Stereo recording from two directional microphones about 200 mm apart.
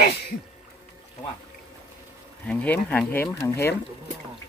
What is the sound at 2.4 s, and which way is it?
Speech, 5° left (ahead or behind).